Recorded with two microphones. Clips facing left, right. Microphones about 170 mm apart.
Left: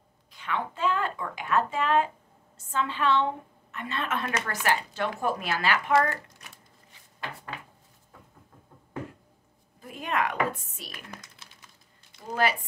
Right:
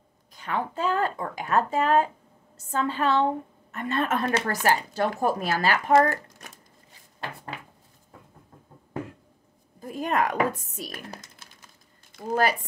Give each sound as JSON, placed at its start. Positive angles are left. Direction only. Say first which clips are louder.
{"t": 0.3, "sound": "speech", "louder": "right 2 dB", "side_deg": -40}
{"t": 9.8, "sound": "typing", "louder": "right 4 dB", "side_deg": -40}